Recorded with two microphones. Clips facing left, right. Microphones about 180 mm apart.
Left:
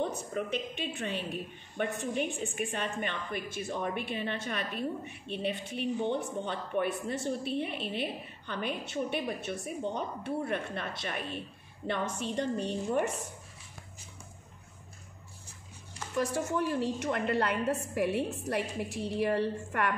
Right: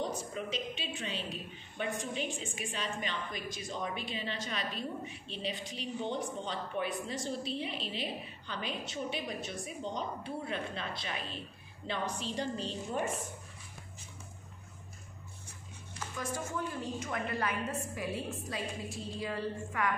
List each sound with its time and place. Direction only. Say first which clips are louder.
0.3 s a woman's voice: left 4 dB; 55° left (ahead or behind)
16.2 s a woman's voice: left 7 dB; 70° left (ahead or behind)